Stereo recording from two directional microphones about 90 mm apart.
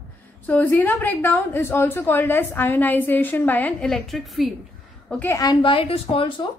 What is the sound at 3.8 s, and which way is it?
Speech, 5° left (ahead or behind).